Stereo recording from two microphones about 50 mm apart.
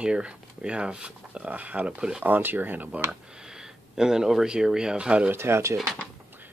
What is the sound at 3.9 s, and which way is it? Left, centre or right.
Speech, centre.